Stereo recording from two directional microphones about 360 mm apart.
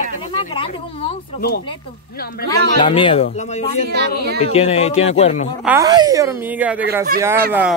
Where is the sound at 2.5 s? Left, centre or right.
Centre.